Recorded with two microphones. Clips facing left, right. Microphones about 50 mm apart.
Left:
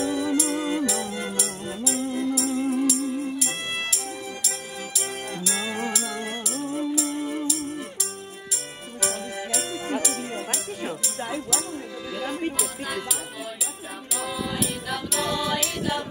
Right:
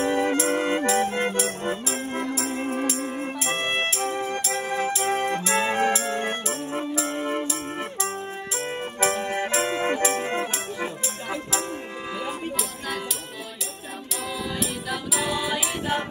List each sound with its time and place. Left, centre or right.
0.0 s music: right
14.9 s music: centre